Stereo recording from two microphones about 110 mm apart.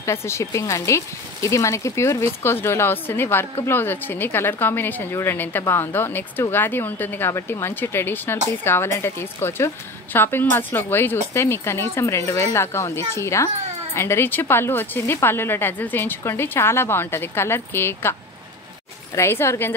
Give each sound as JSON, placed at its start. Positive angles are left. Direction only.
{"t": 0.0, "sound": "speech", "side_deg": 25}
{"t": 19.1, "sound": "speech", "side_deg": 25}